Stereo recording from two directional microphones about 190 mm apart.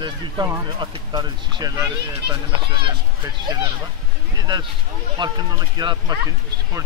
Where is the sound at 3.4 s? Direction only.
20° right (ahead or behind).